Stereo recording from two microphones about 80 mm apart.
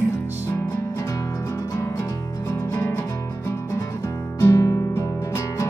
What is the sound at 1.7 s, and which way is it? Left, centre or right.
Music, left.